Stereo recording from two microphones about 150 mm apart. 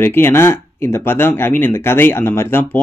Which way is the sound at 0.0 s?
15° left (ahead or behind).